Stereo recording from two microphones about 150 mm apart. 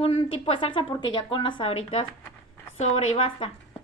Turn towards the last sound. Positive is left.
turn(degrees=40)  # may be behind; listen again after turning